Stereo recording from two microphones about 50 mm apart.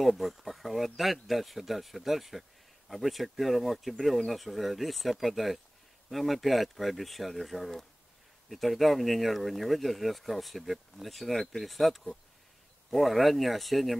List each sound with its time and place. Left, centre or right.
0.0 s speech: centre